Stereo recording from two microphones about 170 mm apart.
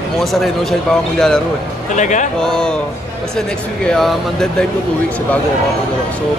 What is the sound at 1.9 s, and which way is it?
Speech, 45° left (ahead or behind).